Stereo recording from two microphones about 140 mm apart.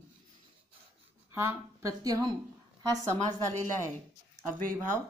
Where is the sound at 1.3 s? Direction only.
20° right (ahead or behind).